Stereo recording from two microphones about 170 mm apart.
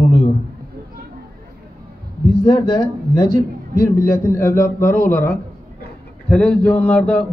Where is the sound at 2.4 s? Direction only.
30° left (ahead or behind).